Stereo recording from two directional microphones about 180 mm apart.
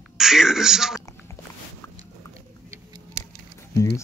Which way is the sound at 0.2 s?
5° right (ahead or behind).